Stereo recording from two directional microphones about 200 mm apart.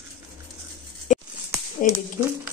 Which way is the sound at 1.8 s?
40° left (ahead or behind).